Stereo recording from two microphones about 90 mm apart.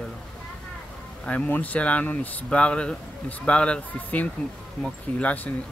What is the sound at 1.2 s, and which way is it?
Speech, 15° left (ahead or behind).